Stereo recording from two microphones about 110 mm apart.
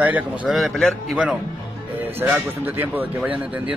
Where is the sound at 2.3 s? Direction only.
15° right (ahead or behind).